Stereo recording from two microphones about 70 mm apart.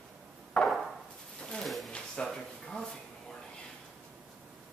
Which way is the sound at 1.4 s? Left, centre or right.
Centre.